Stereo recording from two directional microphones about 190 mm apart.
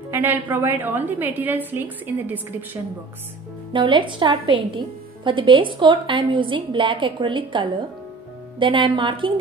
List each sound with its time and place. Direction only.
0.1 s a woman's voice: 10° right (ahead or behind)
3.7 s a woman's voice: 25° right (ahead or behind)